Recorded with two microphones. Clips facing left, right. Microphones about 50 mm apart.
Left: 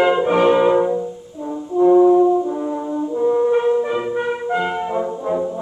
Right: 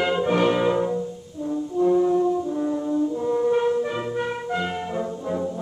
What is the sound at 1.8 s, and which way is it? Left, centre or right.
Brass instrument, left.